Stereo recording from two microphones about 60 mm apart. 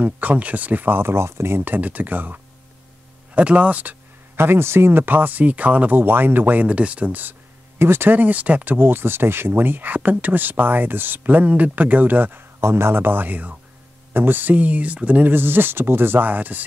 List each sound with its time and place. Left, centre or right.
0.0 s speech: right
4.4 s speech: right
7.8 s speech: right
12.5 s speech: right
15.3 s speech: right